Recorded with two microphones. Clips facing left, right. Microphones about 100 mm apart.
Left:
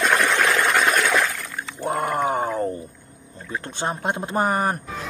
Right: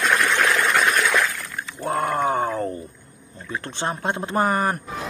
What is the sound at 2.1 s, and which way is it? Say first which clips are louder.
Groan: right 1 dB; 15° left (ahead or behind).